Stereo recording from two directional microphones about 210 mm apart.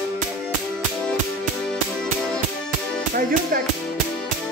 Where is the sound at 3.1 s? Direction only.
45° right (ahead or behind).